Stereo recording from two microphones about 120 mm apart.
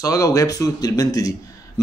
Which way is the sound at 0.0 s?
30° left (ahead or behind).